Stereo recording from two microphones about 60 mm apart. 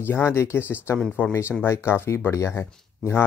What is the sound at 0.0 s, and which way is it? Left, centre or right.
Speech, left.